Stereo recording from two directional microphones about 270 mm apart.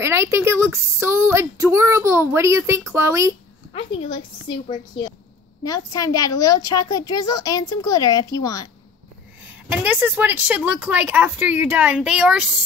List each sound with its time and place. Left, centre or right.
0.0 s speech: centre
4.5 s a child's voice: centre
9.4 s speech: centre